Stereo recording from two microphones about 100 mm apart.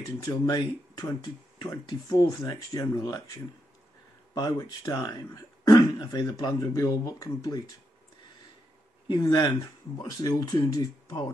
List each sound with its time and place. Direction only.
0.2 s speech: 40° left (ahead or behind)
4.3 s speech: 40° left (ahead or behind)
6.6 s speech: 35° left (ahead or behind)
9.2 s speech: 40° left (ahead or behind)